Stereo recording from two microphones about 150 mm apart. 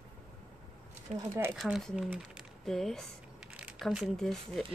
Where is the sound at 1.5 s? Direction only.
Centre (ahead or behind).